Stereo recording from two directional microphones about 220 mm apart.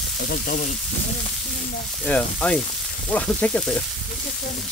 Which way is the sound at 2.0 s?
5° left (ahead or behind).